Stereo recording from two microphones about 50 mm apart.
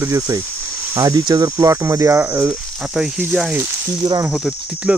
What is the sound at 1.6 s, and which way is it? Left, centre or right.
Cricket, right.